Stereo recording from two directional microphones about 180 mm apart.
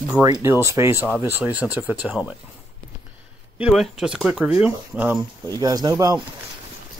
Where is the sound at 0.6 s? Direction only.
15° right (ahead or behind).